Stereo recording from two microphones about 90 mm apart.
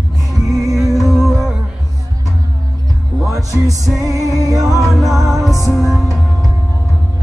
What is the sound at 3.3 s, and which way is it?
Speech, 40° right (ahead or behind).